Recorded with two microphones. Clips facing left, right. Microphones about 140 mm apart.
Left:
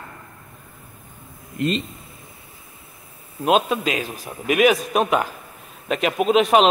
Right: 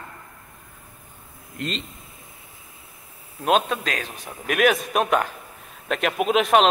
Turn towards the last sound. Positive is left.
turn(degrees=0)  # may be behind; listen again after turning